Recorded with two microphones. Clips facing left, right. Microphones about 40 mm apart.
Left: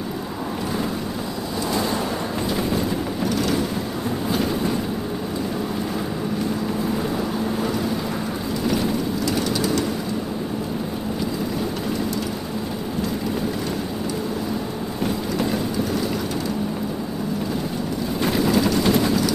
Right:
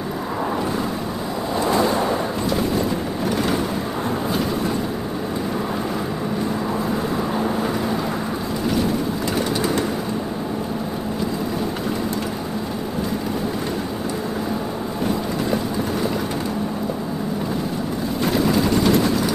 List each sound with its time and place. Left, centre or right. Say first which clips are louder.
1.7 s a sound: right 5 dB; right
3.3 s vehicle: right 1 dB; centre
9.6 s vehicle: right 1 dB; right
18.2 s vehicle: right 1 dB; centre